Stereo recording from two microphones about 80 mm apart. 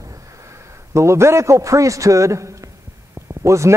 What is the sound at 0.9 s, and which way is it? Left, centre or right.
A man's voice, right.